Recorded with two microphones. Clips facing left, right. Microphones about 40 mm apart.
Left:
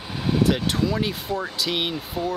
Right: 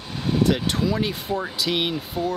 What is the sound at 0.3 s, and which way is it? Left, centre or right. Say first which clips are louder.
Speech: even; centre.